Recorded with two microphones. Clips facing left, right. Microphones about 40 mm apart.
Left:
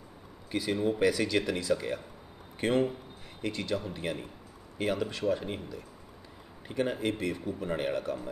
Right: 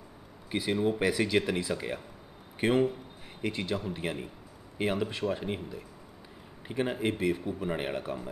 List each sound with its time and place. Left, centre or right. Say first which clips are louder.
0.5 s a man's voice: right 1 dB; centre